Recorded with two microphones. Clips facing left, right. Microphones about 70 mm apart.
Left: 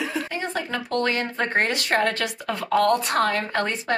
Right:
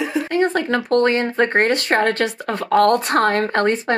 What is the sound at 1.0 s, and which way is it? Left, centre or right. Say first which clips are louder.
Speech: right 6 dB; right.